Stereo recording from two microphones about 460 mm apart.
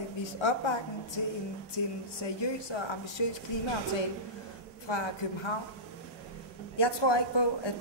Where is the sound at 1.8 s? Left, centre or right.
Left.